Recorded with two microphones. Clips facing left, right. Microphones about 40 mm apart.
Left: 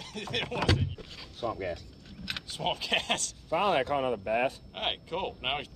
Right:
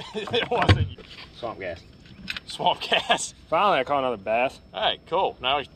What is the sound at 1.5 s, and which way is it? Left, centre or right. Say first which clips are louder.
Keys jangling: right 2 dB; right.